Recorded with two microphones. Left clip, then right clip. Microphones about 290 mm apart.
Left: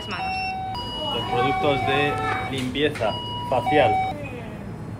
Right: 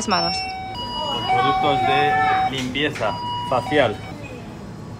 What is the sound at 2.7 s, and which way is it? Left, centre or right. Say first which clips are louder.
Speech: right 1 dB; right.